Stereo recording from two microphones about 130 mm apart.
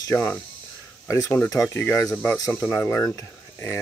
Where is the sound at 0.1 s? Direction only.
15° left (ahead or behind).